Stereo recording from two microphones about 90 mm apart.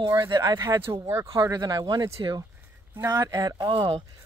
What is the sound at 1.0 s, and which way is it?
Speech, 35° right (ahead or behind).